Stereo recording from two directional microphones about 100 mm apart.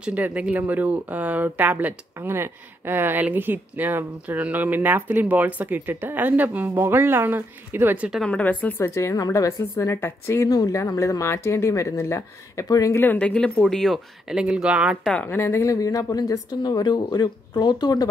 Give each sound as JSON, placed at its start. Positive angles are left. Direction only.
{"t": 0.0, "sound": "a woman's voice", "side_deg": -15}
{"t": 8.3, "sound": "speech", "side_deg": 15}
{"t": 12.9, "sound": "speech", "side_deg": 20}
{"t": 13.3, "sound": "speech", "side_deg": 5}
{"t": 14.2, "sound": "speech", "side_deg": -10}
{"t": 15.0, "sound": "speech", "side_deg": 15}